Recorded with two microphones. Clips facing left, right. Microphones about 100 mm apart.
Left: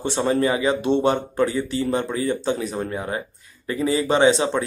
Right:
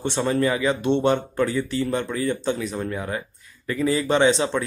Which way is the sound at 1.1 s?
20° left (ahead or behind).